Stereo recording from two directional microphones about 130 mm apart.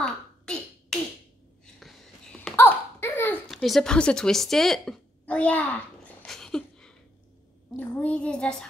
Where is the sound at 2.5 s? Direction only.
15° left (ahead or behind).